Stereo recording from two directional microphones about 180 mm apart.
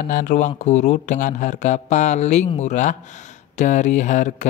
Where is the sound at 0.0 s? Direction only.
45° left (ahead or behind).